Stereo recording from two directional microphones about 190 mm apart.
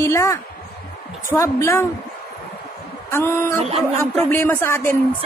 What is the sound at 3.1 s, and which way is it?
Speech, 10° left (ahead or behind).